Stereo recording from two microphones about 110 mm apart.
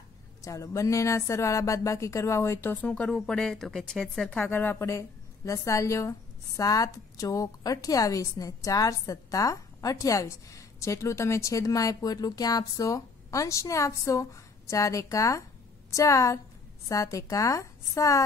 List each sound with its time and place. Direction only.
0.4 s a woman's voice: 30° left (ahead or behind); by 4.5 s 5° left (ahead or behind)
4.5 s a woman's voice: 20° left (ahead or behind)